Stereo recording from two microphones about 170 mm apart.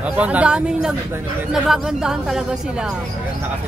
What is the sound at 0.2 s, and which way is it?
Speech, 5° right (ahead or behind).